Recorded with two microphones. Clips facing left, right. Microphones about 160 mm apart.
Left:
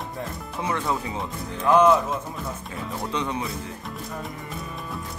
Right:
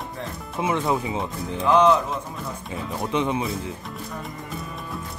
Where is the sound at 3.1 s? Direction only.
20° right (ahead or behind).